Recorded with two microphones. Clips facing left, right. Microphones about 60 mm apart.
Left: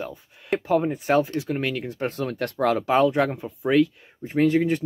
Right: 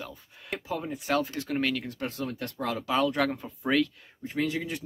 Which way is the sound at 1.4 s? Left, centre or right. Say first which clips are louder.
Left 2 dB; centre.